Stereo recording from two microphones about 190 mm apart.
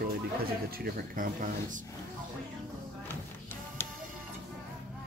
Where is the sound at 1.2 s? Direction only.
45° right (ahead or behind).